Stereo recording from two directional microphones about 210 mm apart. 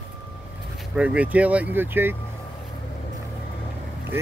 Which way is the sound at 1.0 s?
5° right (ahead or behind).